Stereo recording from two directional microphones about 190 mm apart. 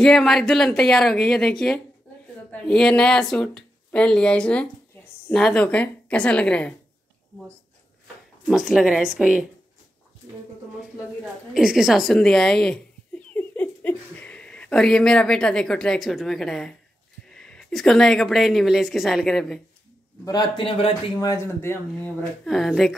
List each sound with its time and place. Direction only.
0.0 s speech: centre (ahead or behind)
8.5 s speech: centre (ahead or behind)
11.5 s a woman's voice: 5° right (ahead or behind)
20.2 s speech: 25° left (ahead or behind)
21.3 s speech: 15° left (ahead or behind)